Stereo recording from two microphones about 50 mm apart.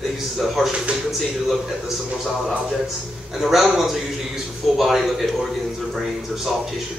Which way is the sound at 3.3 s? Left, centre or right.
Centre.